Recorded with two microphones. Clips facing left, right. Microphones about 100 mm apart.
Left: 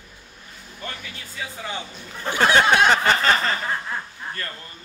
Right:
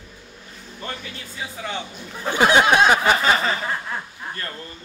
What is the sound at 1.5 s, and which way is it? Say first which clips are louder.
Speech: right 2 dB; centre (ahead or behind).